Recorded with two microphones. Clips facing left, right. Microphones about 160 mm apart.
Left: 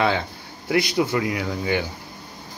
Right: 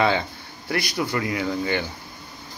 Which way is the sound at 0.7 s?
20° left (ahead or behind).